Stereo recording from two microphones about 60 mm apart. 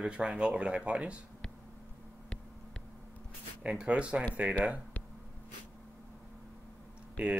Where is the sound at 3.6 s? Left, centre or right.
Centre.